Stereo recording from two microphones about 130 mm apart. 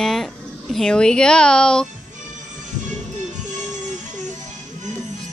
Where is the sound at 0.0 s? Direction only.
Centre (ahead or behind).